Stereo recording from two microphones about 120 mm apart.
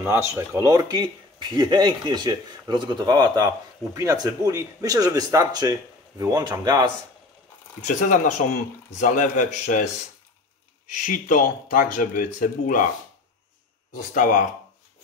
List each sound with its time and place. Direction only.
0.0 s speech: 20° right (ahead or behind)
0.6 s speech: 30° right (ahead or behind)
7.8 s speech: 90° left
10.9 s speech: 90° left
13.9 s speech: 90° left